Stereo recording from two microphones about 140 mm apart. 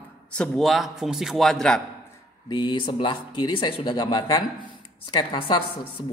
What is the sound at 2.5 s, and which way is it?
A man's voice, 35° left (ahead or behind).